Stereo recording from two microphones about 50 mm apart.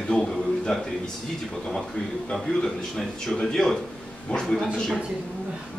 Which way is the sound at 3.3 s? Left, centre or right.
Centre.